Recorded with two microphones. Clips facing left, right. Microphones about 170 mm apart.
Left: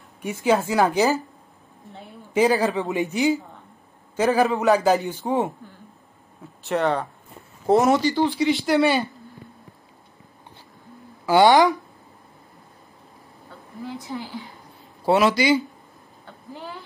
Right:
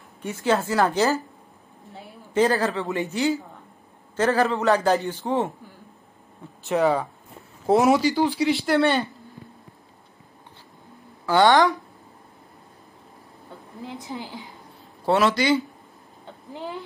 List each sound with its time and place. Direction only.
0.2 s a man's voice: 15° left (ahead or behind)
2.3 s a man's voice: 15° left (ahead or behind)
6.6 s speech: centre (ahead or behind)
11.2 s a man's voice: 10° left (ahead or behind)
13.8 s a woman's voice: 20° right (ahead or behind)
15.0 s speech: 5° left (ahead or behind)
16.3 s a sound: 20° right (ahead or behind)